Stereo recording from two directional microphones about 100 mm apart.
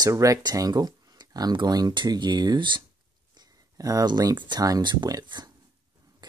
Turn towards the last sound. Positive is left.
turn(degrees=-45)  # may be behind; listen again after turning